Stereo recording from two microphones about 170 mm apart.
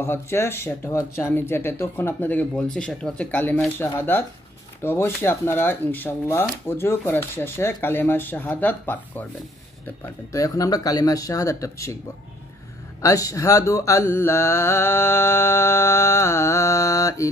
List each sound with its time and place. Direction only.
0.0 s speech: 15° left (ahead or behind)
10.3 s speech: 20° left (ahead or behind)
13.0 s speech: 20° left (ahead or behind)